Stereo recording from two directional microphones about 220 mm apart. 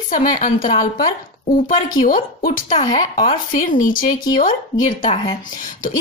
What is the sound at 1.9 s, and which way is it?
Speech, 40° left (ahead or behind).